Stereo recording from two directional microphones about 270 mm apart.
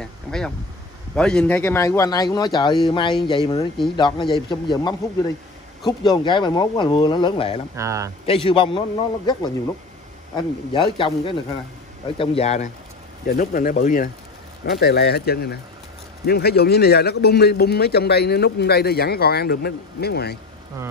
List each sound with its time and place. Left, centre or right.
0.0 s a sound: centre
1.1 s speech: centre
7.7 s speech: centre
8.3 s a man's voice: centre; by 20.3 s left